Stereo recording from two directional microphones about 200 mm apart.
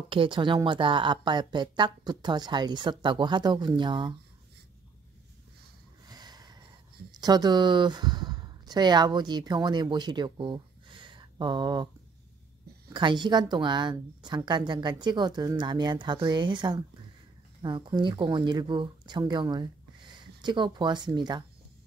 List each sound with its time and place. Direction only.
0.1 s a woman's voice: 25° right (ahead or behind)
6.0 s a sound: 20° right (ahead or behind)
7.2 s speech: 20° right (ahead or behind)
12.9 s a woman's voice: 20° right (ahead or behind)